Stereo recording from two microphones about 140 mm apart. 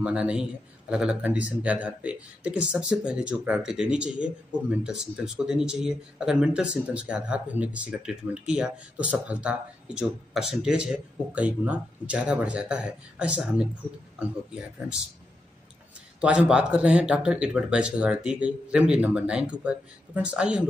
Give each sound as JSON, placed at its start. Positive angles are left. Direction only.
{"t": 0.0, "sound": "speech", "side_deg": -10}
{"t": 16.2, "sound": "speech", "side_deg": -5}